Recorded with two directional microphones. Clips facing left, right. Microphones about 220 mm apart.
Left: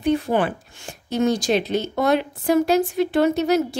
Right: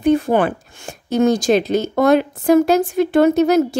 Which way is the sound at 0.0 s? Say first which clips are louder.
Right 5 dB; 45° right (ahead or behind).